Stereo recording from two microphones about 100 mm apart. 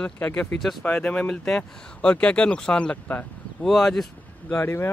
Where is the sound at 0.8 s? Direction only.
15° left (ahead or behind).